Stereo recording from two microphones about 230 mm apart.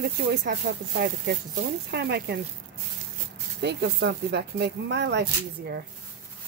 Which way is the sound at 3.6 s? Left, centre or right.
Right.